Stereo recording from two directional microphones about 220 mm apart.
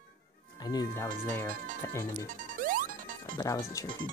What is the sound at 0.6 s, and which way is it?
Speech, 15° left (ahead or behind).